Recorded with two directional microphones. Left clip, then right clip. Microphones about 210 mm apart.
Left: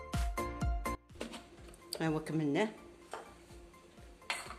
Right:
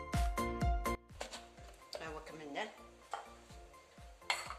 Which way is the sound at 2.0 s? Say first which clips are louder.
Left 12 dB; 55° left (ahead or behind).